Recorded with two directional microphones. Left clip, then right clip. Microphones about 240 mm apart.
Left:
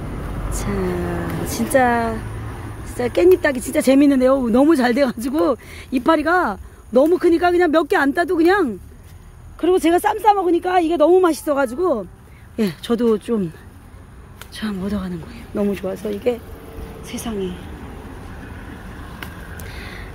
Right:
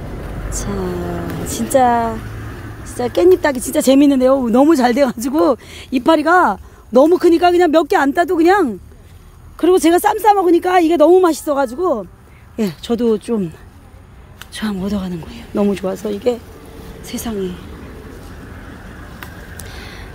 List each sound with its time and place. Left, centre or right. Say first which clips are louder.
0.5 s speech: right 1 dB; right
1.7 s speech: right 3 dB; centre
9.6 s speech: right 4 dB; right
11.2 s speech: right 2 dB; centre
14.5 s a woman's voice: right 4 dB; centre
19.7 s a sound: even; centre